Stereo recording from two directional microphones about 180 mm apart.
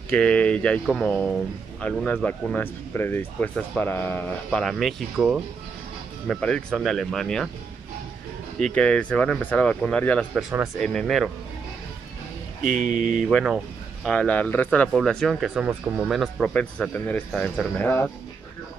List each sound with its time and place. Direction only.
0.1 s speech: 5° left (ahead or behind)
8.5 s speech: 5° left (ahead or behind)
10.3 s speech: 5° right (ahead or behind)
12.6 s speech: 50° right (ahead or behind)
13.1 s speech: centre (ahead or behind)